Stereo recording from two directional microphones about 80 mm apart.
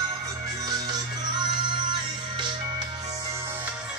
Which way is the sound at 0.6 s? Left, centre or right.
Right.